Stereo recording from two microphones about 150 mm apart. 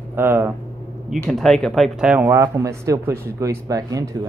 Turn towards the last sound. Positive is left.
turn(degrees=-25)  # may be behind; listen again after turning